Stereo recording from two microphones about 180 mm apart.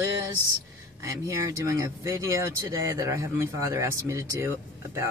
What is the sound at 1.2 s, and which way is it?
Speech, 20° right (ahead or behind).